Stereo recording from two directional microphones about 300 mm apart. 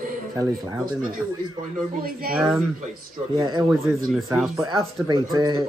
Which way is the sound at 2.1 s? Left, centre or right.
Right.